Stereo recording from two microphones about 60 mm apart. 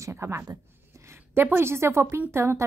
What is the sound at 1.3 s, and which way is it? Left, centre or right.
A woman's voice, right.